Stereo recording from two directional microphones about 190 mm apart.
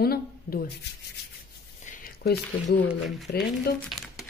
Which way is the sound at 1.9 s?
50° left (ahead or behind).